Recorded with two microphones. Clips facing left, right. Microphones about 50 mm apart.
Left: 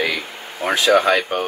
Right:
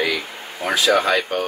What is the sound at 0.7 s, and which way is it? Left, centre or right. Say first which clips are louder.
Speech: left 2 dB; left.